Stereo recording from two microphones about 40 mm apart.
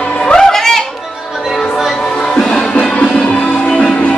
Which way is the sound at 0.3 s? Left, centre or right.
Centre.